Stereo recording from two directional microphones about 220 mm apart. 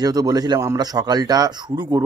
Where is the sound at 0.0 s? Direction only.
15° right (ahead or behind).